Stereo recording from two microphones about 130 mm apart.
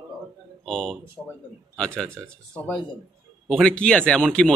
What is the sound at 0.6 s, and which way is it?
Speech, 5° left (ahead or behind).